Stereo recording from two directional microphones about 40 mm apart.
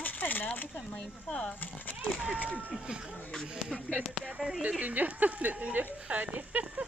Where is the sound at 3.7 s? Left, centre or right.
Centre.